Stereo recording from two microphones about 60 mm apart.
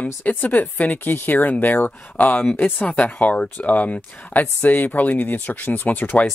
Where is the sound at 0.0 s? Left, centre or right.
Left.